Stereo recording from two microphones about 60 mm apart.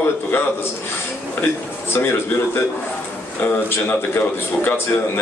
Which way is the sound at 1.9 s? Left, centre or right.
Left.